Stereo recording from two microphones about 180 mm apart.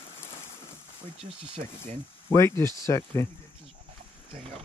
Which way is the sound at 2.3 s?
15° left (ahead or behind).